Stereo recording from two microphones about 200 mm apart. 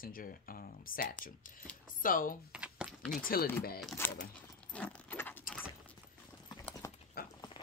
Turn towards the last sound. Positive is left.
turn(degrees=50)  # may be behind; listen again after turning